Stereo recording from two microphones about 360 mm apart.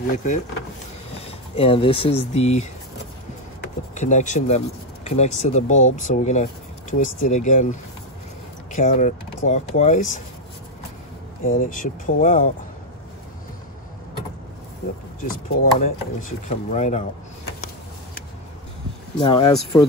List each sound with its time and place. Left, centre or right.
0.1 s speech: left
1.1 s a sound: centre
2.0 s speech: centre
3.9 s speech: centre
8.7 s speech: left
11.4 s speech: left
15.2 s speech: left
19.1 s speech: centre